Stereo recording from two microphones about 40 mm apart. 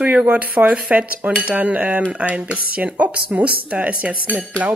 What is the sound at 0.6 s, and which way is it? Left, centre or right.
Speech, right.